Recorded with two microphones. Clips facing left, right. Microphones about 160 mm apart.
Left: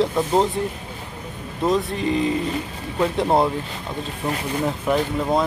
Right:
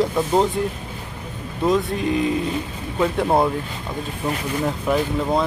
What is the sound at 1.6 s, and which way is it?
Speech, centre (ahead or behind).